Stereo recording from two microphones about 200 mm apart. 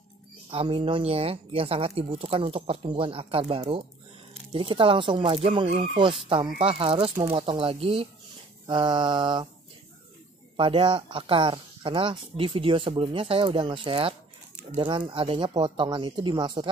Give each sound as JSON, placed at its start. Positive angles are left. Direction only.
{"t": 0.5, "sound": "speech", "side_deg": -30}
{"t": 10.5, "sound": "speech", "side_deg": -25}